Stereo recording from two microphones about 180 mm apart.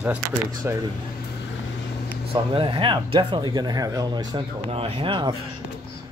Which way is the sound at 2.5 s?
30° right (ahead or behind).